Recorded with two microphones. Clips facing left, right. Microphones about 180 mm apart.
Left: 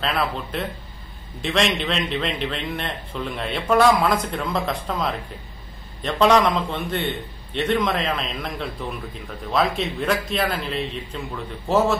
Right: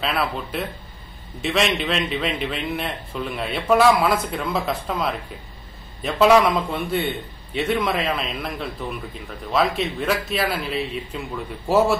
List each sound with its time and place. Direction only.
0.0 s a man's voice: 5° right (ahead or behind)